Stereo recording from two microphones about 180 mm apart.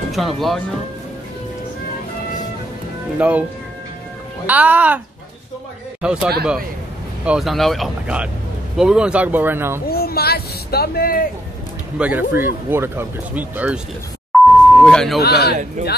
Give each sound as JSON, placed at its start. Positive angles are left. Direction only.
{"t": 0.1, "sound": "speech", "side_deg": 0}
{"t": 3.2, "sound": "speech", "side_deg": -5}
{"t": 4.5, "sound": "speech", "side_deg": -10}
{"t": 6.0, "sound": "speech", "side_deg": -5}
{"t": 7.2, "sound": "speech", "side_deg": 0}
{"t": 9.8, "sound": "speech", "side_deg": 60}
{"t": 12.0, "sound": "speech", "side_deg": -10}
{"t": 14.3, "sound": "beep", "side_deg": 5}
{"t": 15.1, "sound": "speech", "side_deg": 60}